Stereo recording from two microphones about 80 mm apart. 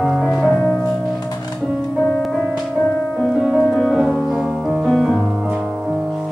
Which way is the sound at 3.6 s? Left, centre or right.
Centre.